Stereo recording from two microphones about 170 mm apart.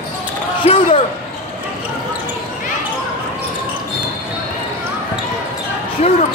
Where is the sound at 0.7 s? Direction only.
35° left (ahead or behind).